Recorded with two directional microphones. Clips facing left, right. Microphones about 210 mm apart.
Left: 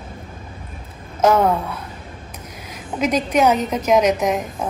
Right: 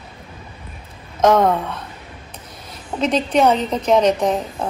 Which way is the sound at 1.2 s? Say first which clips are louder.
Right 1 dB; 10° left (ahead or behind).